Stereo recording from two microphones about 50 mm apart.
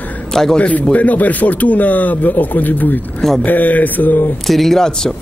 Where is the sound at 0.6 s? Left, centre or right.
Left.